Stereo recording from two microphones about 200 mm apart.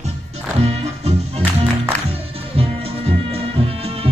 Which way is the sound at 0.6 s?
30° right (ahead or behind).